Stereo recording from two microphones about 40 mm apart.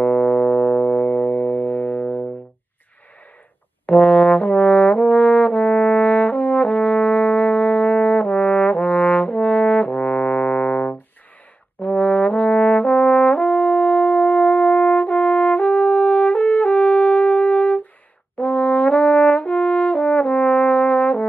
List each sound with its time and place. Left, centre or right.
0.0 s music: left
3.8 s brass instrument: left